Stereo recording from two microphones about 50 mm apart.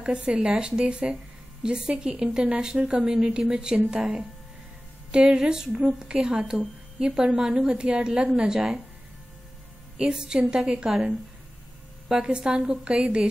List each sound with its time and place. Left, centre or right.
0.0 s speech: centre
9.9 s a woman's voice: centre